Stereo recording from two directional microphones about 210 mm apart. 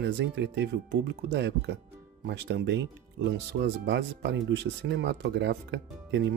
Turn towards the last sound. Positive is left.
turn(degrees=-55)  # may be behind; listen again after turning